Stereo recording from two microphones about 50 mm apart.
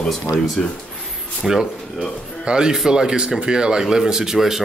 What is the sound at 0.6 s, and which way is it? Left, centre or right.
Speech, centre.